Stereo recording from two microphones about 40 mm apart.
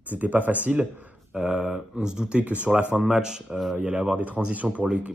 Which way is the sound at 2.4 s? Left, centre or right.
Right.